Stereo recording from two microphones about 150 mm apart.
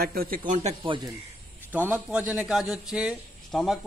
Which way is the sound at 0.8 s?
35° right (ahead or behind).